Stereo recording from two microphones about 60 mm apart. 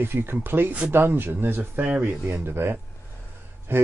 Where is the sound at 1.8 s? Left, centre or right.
Right.